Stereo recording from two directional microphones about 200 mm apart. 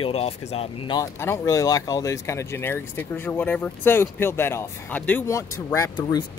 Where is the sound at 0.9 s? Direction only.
15° left (ahead or behind).